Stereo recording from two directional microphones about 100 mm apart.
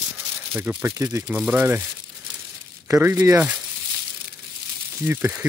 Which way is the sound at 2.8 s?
30° right (ahead or behind).